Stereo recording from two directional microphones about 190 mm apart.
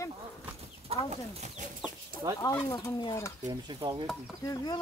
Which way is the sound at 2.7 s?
20° left (ahead or behind).